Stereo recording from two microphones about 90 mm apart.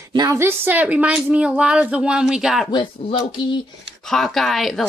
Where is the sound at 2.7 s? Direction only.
65° left (ahead or behind).